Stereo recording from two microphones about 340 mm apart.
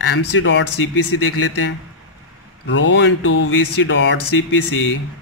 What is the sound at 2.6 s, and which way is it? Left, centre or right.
A man's voice, left.